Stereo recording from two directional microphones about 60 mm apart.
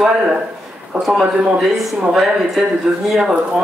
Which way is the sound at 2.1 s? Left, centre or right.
Centre.